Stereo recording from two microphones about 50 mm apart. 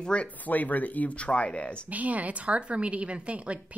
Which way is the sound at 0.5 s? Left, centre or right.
Left.